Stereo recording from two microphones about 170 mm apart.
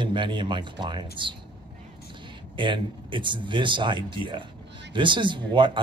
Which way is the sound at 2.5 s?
30° right (ahead or behind).